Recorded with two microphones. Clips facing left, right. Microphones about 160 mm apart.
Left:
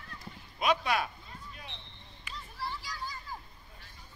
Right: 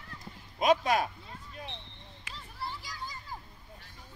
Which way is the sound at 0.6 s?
40° right (ahead or behind).